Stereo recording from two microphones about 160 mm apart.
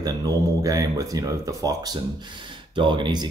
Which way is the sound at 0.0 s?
20° right (ahead or behind).